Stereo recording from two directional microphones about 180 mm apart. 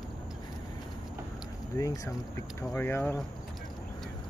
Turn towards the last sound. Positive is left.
turn(degrees=15)  # may be behind; listen again after turning